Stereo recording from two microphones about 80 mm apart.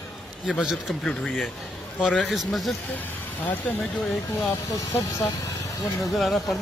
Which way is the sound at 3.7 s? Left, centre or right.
Centre.